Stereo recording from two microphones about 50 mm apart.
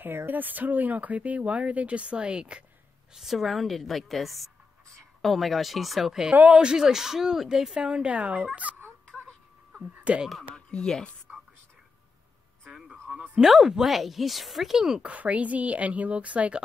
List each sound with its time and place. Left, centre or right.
0.3 s speech: right; by 2.6 s centre
3.2 s speech: centre
6.5 s a woman's voice: centre
10.1 s speech: right
10.5 s speech: centre
11.3 s whispering: centre
13.4 s speech: centre
15.0 s speech: right